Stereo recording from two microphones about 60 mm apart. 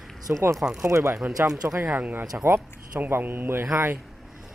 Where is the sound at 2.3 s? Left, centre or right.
Right.